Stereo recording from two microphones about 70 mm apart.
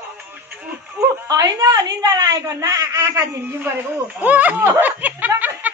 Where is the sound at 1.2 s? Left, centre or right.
Right.